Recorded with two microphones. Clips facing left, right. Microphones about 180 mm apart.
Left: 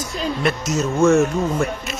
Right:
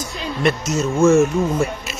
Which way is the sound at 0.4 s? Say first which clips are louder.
Right 4 dB; centre (ahead or behind).